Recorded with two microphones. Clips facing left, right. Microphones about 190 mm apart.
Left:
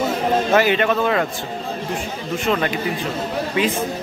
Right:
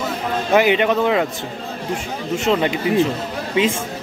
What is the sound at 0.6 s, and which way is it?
Speech, 15° right (ahead or behind).